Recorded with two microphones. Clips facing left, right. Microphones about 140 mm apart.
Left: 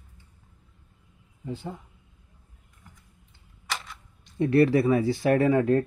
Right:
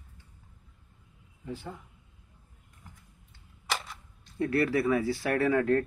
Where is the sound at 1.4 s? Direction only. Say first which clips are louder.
Left 4 dB; 15° left (ahead or behind).